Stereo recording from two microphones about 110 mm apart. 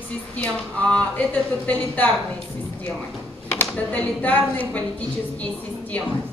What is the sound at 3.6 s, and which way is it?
A woman's voice, 10° left (ahead or behind).